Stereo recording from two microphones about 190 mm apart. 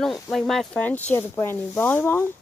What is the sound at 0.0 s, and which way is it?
Speech, centre (ahead or behind).